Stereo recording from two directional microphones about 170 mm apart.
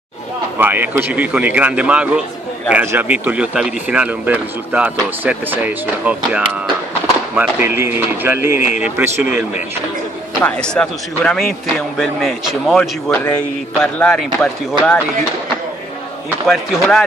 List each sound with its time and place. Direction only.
0.6 s speech: 10° right (ahead or behind)
10.4 s speech: 5° left (ahead or behind)
13.1 s speech: 20° left (ahead or behind)
13.9 s speech: 5° left (ahead or behind)
16.4 s speech: centre (ahead or behind)